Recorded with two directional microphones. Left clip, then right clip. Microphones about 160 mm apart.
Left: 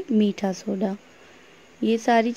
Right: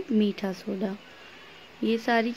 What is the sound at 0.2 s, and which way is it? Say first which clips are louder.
Speech: left 4 dB; 40° left (ahead or behind).